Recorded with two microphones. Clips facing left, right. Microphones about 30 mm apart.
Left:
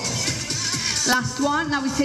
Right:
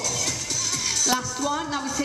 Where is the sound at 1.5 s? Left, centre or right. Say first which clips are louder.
Left 5 dB; centre.